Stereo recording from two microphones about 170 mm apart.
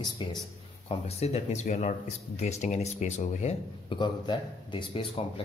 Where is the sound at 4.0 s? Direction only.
30° left (ahead or behind).